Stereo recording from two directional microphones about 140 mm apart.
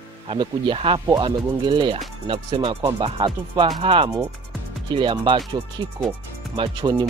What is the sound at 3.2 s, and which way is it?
Speech, 25° right (ahead or behind).